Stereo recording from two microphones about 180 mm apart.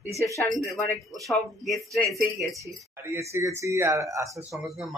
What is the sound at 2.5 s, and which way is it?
Speech, 15° right (ahead or behind).